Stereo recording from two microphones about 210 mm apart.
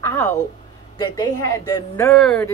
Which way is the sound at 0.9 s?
20° left (ahead or behind).